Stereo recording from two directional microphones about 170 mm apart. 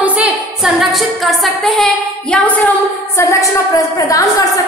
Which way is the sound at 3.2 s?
20° left (ahead or behind).